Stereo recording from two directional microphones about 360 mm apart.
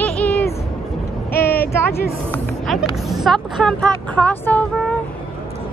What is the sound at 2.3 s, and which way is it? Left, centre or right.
Speech, centre.